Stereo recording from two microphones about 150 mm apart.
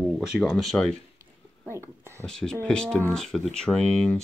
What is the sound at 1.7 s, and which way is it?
Speech, 15° right (ahead or behind).